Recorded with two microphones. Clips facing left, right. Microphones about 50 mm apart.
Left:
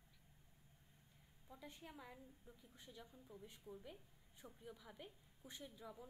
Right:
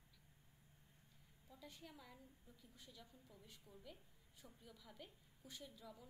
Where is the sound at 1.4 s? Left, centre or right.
Left.